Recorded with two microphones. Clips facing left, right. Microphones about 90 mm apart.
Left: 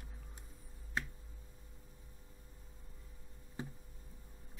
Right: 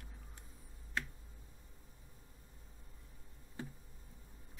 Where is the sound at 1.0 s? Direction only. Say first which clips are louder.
Left 1 dB; 20° left (ahead or behind).